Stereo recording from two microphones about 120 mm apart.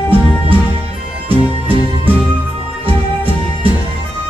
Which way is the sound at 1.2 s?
50° right (ahead or behind).